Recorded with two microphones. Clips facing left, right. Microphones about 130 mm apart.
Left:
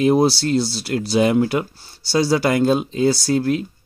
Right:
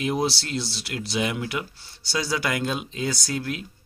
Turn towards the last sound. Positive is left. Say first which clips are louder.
# left 11 dB
turn(degrees=35)  # may be behind; listen again after turning